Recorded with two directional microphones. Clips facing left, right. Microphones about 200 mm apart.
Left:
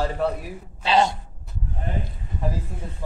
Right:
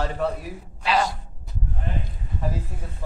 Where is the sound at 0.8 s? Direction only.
25° left (ahead or behind).